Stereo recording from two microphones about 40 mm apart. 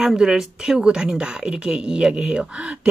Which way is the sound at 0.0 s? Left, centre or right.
Centre.